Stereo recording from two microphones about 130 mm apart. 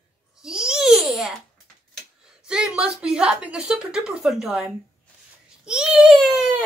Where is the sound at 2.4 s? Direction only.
5° right (ahead or behind).